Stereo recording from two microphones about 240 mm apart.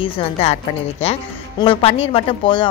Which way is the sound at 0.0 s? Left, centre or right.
Left.